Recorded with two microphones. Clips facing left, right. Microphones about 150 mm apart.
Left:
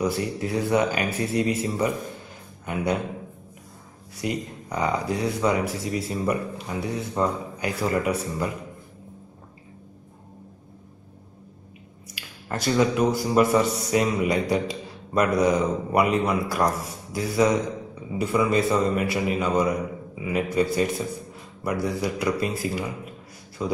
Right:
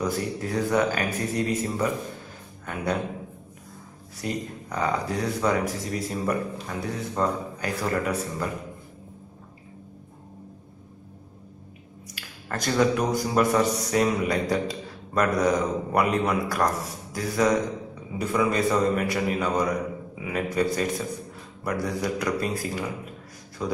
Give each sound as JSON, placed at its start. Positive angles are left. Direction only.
{"t": 0.0, "sound": "speech", "side_deg": 10}
{"t": 4.2, "sound": "speech", "side_deg": 15}
{"t": 12.4, "sound": "a man's voice", "side_deg": 5}